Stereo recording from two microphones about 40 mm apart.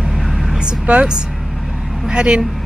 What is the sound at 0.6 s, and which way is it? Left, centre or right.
Vehicle, right.